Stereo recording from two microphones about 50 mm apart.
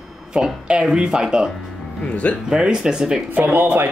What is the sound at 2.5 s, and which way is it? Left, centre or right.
Speech, centre.